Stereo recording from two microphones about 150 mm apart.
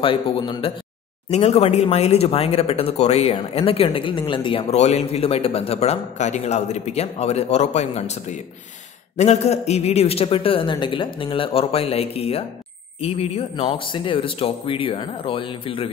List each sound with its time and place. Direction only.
0.0 s a man's voice: 30° left (ahead or behind)
1.3 s a man's voice: 45° left (ahead or behind)